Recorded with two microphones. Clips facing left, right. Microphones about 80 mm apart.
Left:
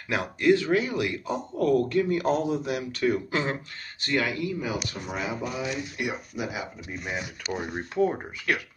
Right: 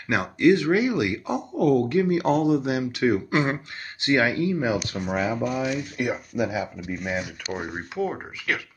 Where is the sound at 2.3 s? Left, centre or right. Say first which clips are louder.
Right 5 dB; right.